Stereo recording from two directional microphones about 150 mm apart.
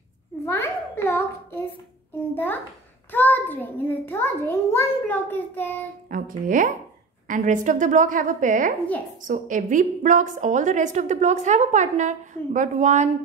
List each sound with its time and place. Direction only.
0.5 s a sound: 15° left (ahead or behind)
3.1 s a child's voice: 10° left (ahead or behind)
6.0 s a woman's voice: 60° right (ahead or behind)